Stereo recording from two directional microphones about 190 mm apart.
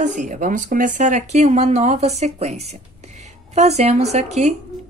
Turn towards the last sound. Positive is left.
turn(degrees=-35)  # may be behind; listen again after turning